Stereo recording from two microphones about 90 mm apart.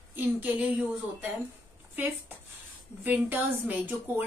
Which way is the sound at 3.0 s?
20° right (ahead or behind).